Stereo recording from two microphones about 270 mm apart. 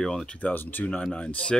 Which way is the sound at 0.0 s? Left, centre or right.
Centre.